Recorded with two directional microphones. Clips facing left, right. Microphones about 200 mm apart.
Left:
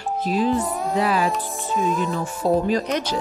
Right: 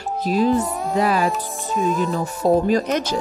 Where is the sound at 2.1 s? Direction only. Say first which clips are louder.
Right 3 dB; 45° right (ahead or behind).